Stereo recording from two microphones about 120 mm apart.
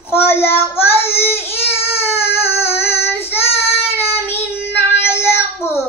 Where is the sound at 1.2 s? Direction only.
20° left (ahead or behind).